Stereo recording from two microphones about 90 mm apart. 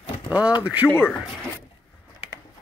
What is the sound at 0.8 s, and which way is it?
Speech, 20° left (ahead or behind).